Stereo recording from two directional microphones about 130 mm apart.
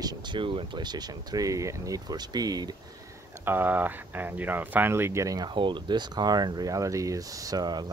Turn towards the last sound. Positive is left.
turn(degrees=-30)  # may be behind; listen again after turning